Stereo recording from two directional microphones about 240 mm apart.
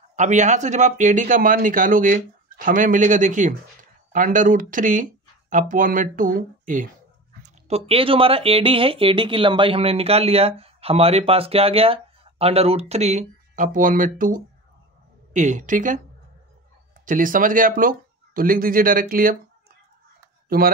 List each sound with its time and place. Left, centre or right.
0.1 s speech: right
17.0 s speech: right
20.4 s speech: right